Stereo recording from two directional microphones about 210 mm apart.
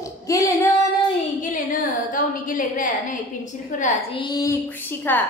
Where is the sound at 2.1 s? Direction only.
40° left (ahead or behind).